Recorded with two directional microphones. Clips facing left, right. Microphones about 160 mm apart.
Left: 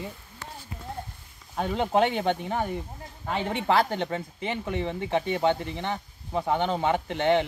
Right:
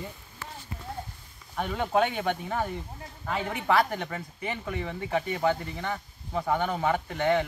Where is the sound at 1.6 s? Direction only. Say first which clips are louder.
Left 2 dB; 25° left (ahead or behind).